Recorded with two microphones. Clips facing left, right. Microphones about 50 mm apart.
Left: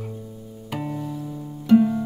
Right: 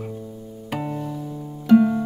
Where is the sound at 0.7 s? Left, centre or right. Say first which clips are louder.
Right 2 dB; centre.